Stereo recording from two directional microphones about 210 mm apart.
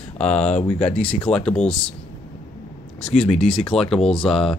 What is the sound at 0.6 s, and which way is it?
Speech, 30° left (ahead or behind).